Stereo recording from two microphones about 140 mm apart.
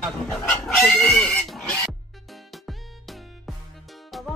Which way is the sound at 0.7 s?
5° left (ahead or behind).